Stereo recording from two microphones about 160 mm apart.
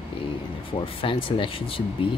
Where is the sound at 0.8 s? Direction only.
35° left (ahead or behind).